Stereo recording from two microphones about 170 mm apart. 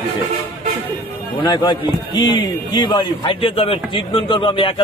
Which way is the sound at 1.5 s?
25° left (ahead or behind).